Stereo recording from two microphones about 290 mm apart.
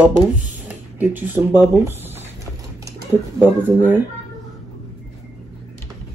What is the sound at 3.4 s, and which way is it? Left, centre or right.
Speech, centre.